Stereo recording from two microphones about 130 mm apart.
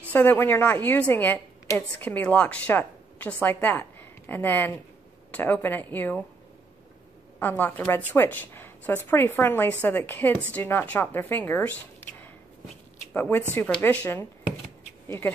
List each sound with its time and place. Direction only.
0.1 s a woman's voice: 15° left (ahead or behind)
7.3 s a woman's voice: 15° left (ahead or behind)